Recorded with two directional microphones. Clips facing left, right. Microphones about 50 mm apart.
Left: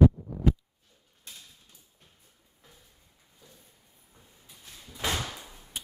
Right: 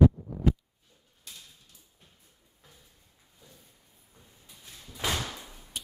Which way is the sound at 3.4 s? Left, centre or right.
Centre.